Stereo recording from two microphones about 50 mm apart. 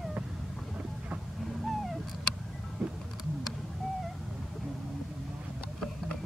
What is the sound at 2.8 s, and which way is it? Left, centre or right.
Music, centre.